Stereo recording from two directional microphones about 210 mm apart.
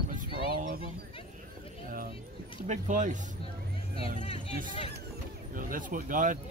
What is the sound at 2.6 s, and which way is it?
Speech, 35° right (ahead or behind).